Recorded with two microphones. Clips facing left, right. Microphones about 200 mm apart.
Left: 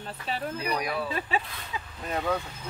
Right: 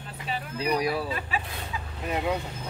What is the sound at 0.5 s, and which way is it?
Speech, 30° right (ahead or behind).